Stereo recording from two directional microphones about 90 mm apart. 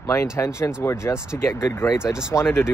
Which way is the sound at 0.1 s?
30° left (ahead or behind).